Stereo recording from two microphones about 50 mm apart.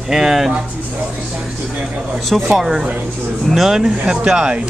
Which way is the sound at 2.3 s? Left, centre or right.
Centre.